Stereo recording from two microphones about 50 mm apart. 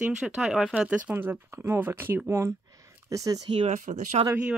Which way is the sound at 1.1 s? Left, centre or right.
Right.